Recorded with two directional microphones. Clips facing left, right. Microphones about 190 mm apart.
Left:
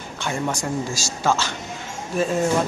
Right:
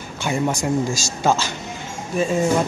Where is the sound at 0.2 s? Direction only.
10° right (ahead or behind).